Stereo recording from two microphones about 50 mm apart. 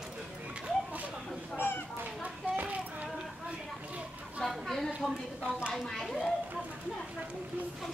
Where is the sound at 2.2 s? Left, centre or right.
Right.